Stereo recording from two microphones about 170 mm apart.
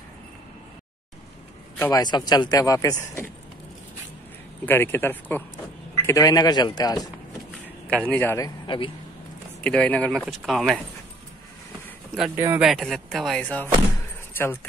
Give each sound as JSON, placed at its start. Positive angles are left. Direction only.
{"t": 1.8, "sound": "speech", "side_deg": 20}
{"t": 4.6, "sound": "speech", "side_deg": 15}
{"t": 8.1, "sound": "speech", "side_deg": 15}
{"t": 8.6, "sound": "speech", "side_deg": 30}
{"t": 9.6, "sound": "speech", "side_deg": 5}
{"t": 12.4, "sound": "speech", "side_deg": -15}
{"t": 12.6, "sound": "speech", "side_deg": 0}